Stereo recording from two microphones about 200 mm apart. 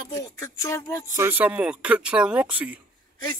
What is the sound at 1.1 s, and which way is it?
Speech, 10° right (ahead or behind).